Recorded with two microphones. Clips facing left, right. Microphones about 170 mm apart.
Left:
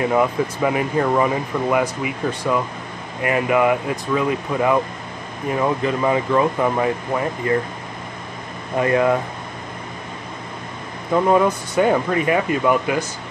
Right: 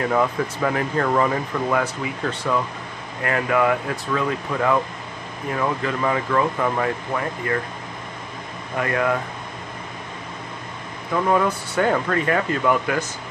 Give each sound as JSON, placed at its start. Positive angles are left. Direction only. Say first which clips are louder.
{"t": 0.0, "sound": "speech", "louder": "left 3 dB", "side_deg": 15}
{"t": 8.7, "sound": "speech", "louder": "left 5 dB", "side_deg": 25}
{"t": 11.2, "sound": "speech", "louder": "left 3 dB", "side_deg": 20}